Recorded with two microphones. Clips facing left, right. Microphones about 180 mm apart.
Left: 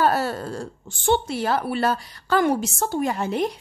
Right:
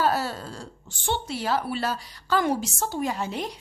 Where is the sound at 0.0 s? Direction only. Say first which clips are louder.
Left 4 dB; 55° left (ahead or behind).